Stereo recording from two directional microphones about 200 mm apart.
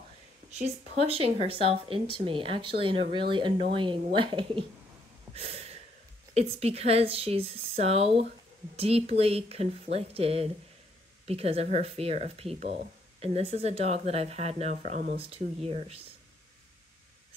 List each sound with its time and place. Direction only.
1.0 s speech: 30° right (ahead or behind)
5.3 s a sound: 30° right (ahead or behind)
6.3 s speech: 30° right (ahead or behind)
15.1 s speech: 30° right (ahead or behind)